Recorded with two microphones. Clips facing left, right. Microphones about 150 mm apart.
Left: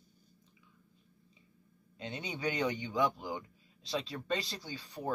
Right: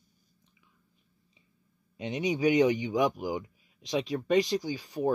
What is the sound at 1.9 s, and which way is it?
Speech, 15° right (ahead or behind).